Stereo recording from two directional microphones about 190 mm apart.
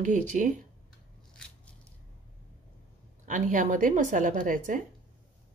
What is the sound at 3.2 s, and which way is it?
Speech, 40° right (ahead or behind).